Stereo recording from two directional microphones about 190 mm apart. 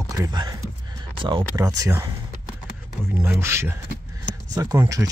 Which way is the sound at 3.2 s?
10° right (ahead or behind).